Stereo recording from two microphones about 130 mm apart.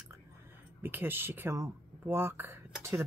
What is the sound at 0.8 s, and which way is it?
Speech, 15° right (ahead or behind).